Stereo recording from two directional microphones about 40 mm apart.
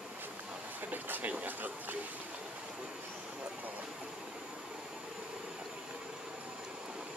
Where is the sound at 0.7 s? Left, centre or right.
Right.